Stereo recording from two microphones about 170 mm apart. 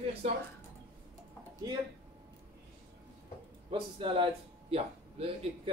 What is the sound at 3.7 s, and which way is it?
Speech, 30° right (ahead or behind).